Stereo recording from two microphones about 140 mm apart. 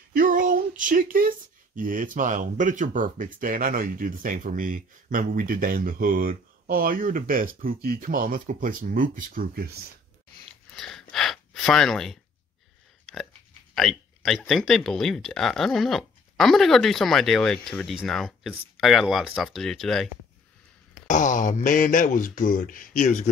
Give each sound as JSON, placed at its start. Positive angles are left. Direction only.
{"t": 0.1, "sound": "a sound", "side_deg": -75}
{"t": 1.8, "sound": "speech", "side_deg": -70}
{"t": 10.8, "sound": "speech", "side_deg": 0}
{"t": 13.0, "sound": "chewing", "side_deg": 5}
{"t": 13.7, "sound": "speech", "side_deg": 0}
{"t": 21.1, "sound": "speech", "side_deg": 65}